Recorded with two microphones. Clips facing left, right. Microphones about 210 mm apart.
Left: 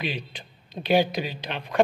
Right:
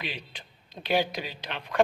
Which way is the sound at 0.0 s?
20° left (ahead or behind).